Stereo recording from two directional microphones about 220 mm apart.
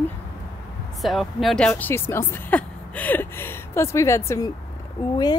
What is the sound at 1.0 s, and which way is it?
Speech, centre (ahead or behind).